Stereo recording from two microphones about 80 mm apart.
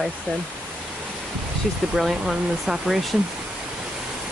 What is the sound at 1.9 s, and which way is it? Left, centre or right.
Speech, centre.